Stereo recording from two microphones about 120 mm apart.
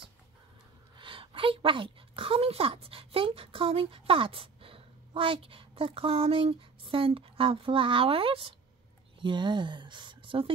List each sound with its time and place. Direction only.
0.9 s speech: 45° right (ahead or behind)